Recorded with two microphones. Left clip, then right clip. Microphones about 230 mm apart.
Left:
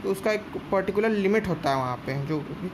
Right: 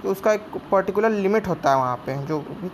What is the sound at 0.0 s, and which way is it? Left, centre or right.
Speech, centre.